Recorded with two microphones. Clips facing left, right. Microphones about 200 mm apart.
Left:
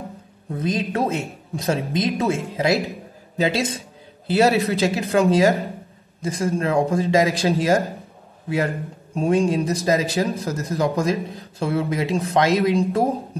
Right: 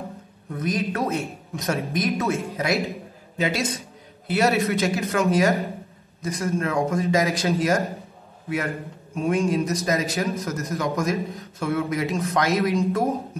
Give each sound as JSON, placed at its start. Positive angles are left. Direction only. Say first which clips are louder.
{"t": 0.5, "sound": "a man's voice", "louder": "left 2 dB", "side_deg": 25}